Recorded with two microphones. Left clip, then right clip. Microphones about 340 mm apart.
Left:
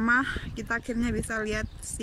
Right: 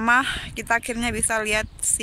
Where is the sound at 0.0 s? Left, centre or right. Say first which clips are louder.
Right 6 dB; centre.